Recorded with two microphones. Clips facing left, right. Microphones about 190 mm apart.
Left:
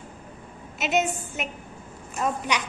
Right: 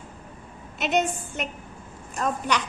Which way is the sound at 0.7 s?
5° left (ahead or behind).